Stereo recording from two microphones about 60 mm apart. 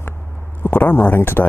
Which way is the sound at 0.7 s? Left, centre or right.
Left.